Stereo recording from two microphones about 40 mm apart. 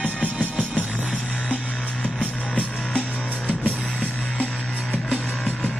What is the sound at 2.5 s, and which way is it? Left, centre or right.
Music, left.